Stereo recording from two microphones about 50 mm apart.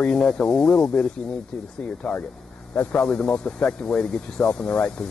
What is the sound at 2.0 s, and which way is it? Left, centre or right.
Speech, centre.